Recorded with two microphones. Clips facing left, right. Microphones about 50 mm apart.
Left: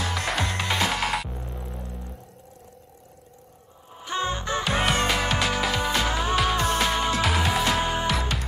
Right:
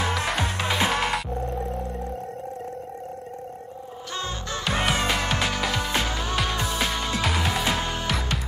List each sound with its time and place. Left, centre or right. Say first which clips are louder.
0.4 s music: right 1 dB; centre
1.0 s music: right 1 dB; centre
1.6 s music: right 9 dB; right
4.1 s music: left 5 dB; left
4.6 s music: even; centre